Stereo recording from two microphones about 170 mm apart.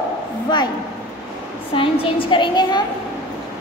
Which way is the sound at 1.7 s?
30° left (ahead or behind).